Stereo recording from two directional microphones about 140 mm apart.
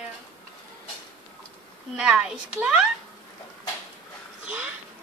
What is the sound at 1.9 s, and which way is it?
Speech, 5° right (ahead or behind).